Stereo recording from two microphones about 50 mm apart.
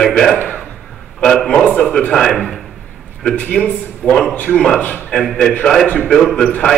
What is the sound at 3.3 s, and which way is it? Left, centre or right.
Speech, left.